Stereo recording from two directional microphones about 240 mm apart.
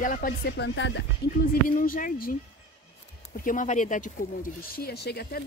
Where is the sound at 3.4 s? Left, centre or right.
Left.